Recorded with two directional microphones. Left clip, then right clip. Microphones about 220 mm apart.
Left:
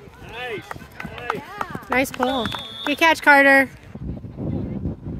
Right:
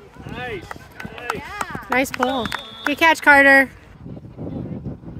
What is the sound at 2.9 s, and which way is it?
Speech, centre (ahead or behind).